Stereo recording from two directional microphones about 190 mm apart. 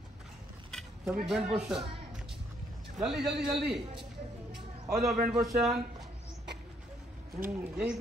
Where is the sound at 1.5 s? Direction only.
5° right (ahead or behind).